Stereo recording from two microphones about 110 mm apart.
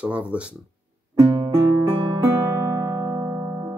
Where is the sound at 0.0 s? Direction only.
10° right (ahead or behind).